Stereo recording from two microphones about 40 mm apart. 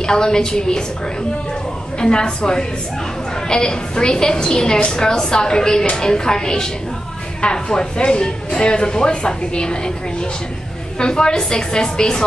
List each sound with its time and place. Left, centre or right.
0.0 s speech: centre
2.0 s speech: left
11.0 s speech: left